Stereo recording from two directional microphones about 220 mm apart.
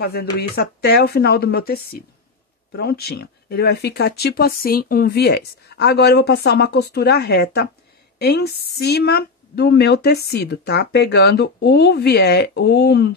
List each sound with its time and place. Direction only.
0.0 s speech: 45° left (ahead or behind)